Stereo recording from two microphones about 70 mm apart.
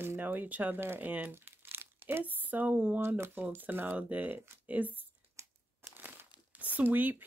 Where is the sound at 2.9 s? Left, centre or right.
Right.